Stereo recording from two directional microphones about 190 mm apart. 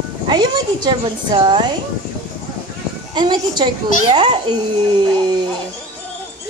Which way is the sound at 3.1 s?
20° right (ahead or behind).